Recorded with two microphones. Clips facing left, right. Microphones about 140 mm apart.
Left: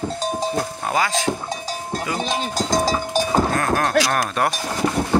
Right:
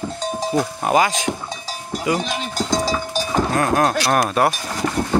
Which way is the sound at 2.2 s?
35° left (ahead or behind).